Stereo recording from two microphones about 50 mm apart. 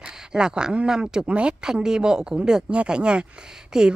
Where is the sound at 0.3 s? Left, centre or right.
Centre.